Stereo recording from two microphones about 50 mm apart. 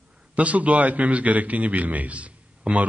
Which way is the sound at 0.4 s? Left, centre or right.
Right.